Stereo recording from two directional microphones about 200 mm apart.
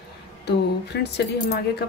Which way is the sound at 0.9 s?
60° left (ahead or behind).